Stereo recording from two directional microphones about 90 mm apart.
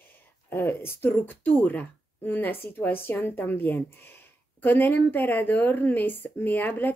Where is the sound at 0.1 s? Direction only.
25° left (ahead or behind).